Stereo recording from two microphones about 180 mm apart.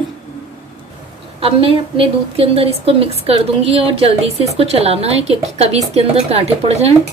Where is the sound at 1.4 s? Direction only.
30° right (ahead or behind).